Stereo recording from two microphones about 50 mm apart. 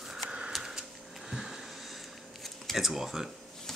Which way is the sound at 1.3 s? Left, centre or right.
Centre.